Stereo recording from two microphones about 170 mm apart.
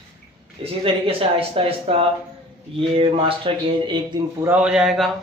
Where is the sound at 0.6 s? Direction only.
35° right (ahead or behind).